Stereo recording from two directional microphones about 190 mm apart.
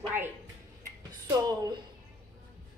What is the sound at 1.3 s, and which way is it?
Speech, 20° right (ahead or behind).